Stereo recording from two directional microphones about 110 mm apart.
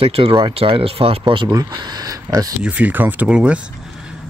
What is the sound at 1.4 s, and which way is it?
Speech, 35° right (ahead or behind).